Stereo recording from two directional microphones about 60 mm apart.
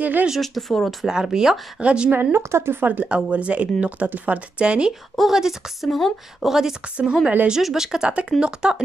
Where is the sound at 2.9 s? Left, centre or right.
Right.